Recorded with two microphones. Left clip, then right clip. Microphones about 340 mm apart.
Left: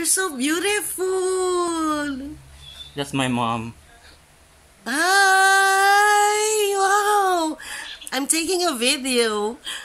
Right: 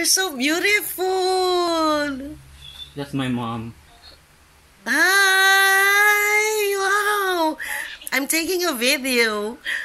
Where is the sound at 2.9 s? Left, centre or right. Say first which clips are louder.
Left 3 dB; centre.